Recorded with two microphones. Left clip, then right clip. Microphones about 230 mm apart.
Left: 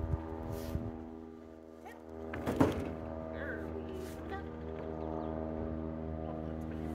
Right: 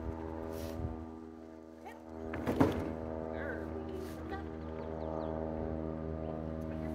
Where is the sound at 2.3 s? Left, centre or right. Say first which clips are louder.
Even; left.